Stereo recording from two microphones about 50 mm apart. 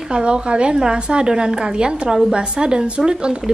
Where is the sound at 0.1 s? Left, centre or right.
Centre.